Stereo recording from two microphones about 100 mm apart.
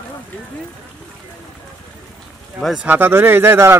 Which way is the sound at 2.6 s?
10° right (ahead or behind).